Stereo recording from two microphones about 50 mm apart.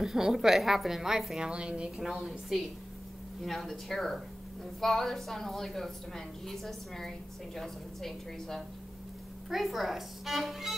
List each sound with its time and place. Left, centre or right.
0.0 s a woman's voice: centre
1.5 s a woman's voice: right
2.1 s a woman's voice: centre